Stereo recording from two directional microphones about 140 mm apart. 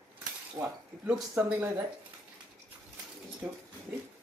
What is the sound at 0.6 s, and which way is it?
Speech, 20° right (ahead or behind).